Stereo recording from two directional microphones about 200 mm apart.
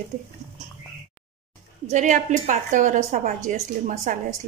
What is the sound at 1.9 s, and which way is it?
A woman's voice, 40° right (ahead or behind).